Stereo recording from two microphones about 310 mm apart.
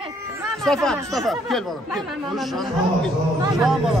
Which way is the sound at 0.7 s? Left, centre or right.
Centre.